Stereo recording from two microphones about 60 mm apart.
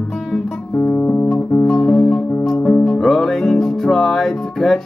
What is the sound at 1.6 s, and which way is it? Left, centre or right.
Music, centre.